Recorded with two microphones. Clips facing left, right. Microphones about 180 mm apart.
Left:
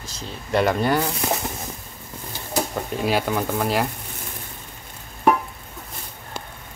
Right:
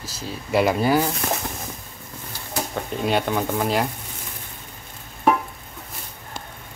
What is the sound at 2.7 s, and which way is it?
Speech, centre (ahead or behind).